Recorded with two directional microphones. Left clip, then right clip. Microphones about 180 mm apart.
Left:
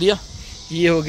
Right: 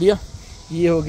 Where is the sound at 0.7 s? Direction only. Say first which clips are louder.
Left 1 dB; centre (ahead or behind).